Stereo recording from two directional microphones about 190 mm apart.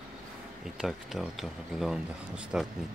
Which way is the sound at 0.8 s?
Centre (ahead or behind).